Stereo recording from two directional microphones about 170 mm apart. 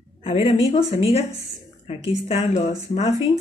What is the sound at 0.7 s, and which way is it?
Speech, 40° left (ahead or behind).